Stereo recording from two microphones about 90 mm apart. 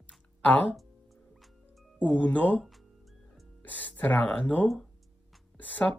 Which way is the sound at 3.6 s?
15° left (ahead or behind).